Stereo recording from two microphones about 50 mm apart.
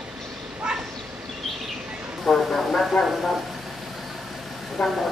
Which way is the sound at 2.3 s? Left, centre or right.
Centre.